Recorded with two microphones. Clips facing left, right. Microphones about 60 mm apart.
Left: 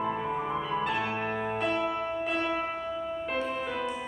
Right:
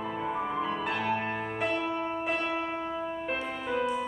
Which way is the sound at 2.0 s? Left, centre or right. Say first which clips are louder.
Even; right.